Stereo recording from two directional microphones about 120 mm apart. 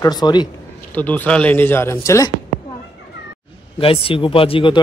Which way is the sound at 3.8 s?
50° left (ahead or behind).